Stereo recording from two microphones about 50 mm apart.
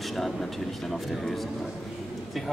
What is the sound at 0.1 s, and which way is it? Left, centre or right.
Speech, centre.